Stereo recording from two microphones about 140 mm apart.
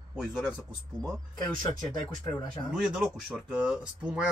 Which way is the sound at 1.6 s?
25° left (ahead or behind).